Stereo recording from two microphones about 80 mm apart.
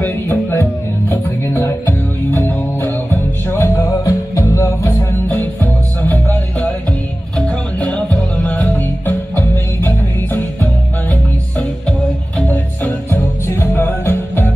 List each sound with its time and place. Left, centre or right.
0.0 s music: left
4.0 s music: left
5.4 s music: left
7.3 s music: centre
8.5 s music: centre
9.0 s music: left
10.6 s music: centre